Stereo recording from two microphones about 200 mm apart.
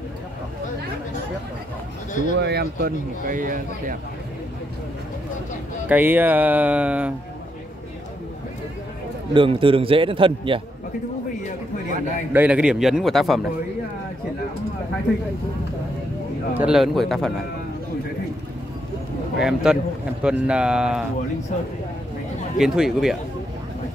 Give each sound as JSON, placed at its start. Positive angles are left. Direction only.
{"t": 2.3, "sound": "speech", "side_deg": -55}
{"t": 5.9, "sound": "speech", "side_deg": -10}
{"t": 9.3, "sound": "a man's voice", "side_deg": -25}
{"t": 12.3, "sound": "a man's voice", "side_deg": -5}
{"t": 16.5, "sound": "a man's voice", "side_deg": -5}
{"t": 19.4, "sound": "a man's voice", "side_deg": -5}
{"t": 22.6, "sound": "a man's voice", "side_deg": 0}